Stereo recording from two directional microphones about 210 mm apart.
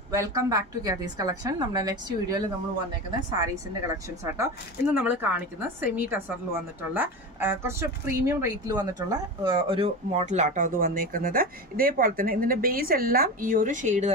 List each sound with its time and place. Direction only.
0.1 s a woman's voice: 15° right (ahead or behind)
4.9 s a woman's voice: 10° right (ahead or behind); by 14.1 s 35° right (ahead or behind)